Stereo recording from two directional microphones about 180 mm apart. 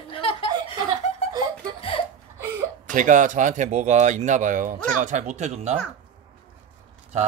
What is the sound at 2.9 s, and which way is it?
Speech, 45° right (ahead or behind).